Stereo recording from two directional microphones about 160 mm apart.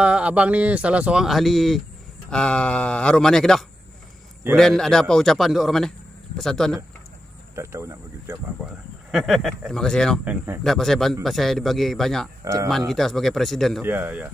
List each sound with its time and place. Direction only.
0.0 s a man's voice: 5° right (ahead or behind)
7.5 s speech: 15° right (ahead or behind)
8.5 s a man's voice: centre (ahead or behind)
10.2 s speech: 10° right (ahead or behind)
10.6 s a man's voice: centre (ahead or behind)
13.8 s speech: 10° right (ahead or behind)